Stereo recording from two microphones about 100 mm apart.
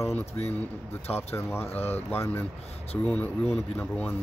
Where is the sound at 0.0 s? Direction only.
25° left (ahead or behind).